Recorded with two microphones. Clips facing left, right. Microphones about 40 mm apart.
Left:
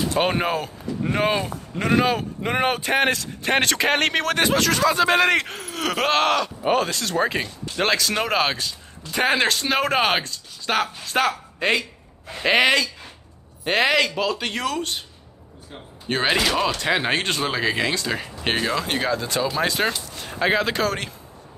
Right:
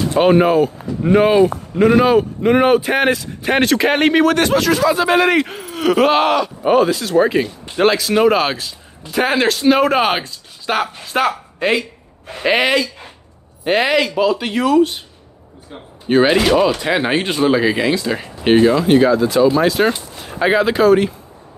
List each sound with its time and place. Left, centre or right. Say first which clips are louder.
0.2 s speech: right 12 dB; centre
16.1 s speech: right 8 dB; centre